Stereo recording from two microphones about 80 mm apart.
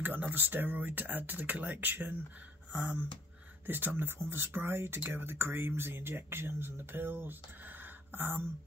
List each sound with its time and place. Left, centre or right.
0.0 s speech: right